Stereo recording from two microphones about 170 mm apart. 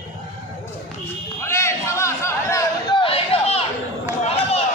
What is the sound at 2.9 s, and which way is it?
Chatter, 35° left (ahead or behind).